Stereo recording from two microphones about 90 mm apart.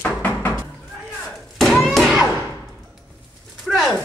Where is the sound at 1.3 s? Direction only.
5° left (ahead or behind).